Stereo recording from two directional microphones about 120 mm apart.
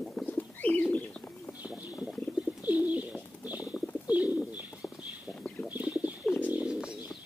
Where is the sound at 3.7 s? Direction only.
5° left (ahead or behind).